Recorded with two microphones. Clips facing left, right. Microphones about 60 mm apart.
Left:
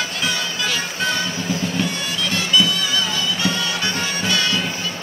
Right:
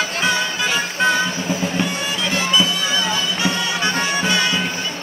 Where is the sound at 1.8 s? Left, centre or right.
Right.